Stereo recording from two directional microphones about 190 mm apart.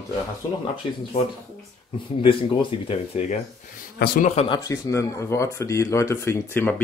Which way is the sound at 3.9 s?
50° left (ahead or behind).